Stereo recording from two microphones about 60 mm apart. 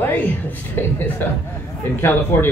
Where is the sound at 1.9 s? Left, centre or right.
Left.